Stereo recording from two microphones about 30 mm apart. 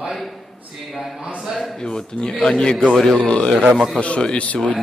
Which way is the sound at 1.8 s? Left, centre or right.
Left.